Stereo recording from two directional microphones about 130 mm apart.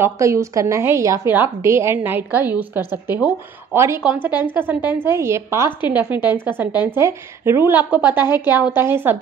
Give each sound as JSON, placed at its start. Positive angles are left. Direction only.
{"t": 0.0, "sound": "a woman's voice", "side_deg": -20}